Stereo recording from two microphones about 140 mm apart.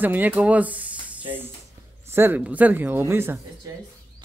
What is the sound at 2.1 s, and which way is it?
Speech, 15° right (ahead or behind).